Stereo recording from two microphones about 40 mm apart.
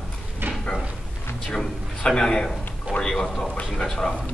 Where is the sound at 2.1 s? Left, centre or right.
Centre.